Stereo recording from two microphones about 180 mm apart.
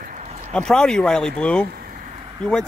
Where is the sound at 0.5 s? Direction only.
5° left (ahead or behind).